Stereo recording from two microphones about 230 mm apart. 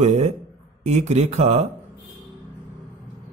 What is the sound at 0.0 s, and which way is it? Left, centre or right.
Speech, right.